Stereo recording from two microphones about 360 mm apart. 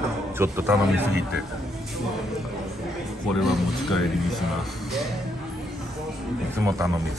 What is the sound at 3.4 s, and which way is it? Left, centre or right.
Speech, centre.